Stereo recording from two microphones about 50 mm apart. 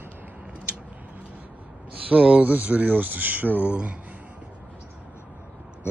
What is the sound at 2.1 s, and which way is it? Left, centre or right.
Speech, right.